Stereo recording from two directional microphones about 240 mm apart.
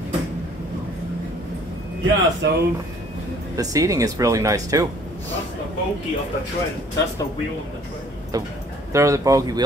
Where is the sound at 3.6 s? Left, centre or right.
Centre.